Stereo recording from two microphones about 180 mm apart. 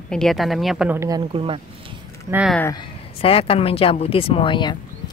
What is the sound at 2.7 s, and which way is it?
Speech, 30° left (ahead or behind).